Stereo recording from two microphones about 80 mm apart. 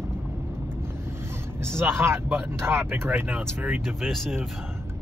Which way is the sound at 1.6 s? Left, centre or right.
Right.